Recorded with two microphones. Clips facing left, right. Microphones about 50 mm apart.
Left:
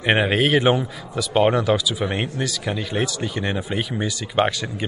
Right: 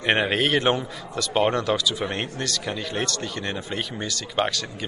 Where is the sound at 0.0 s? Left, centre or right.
Centre.